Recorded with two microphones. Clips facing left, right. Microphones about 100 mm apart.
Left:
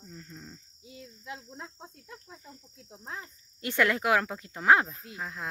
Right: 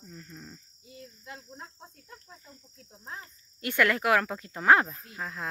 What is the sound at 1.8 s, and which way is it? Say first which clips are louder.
Cricket: left 3 dB; 20° left (ahead or behind).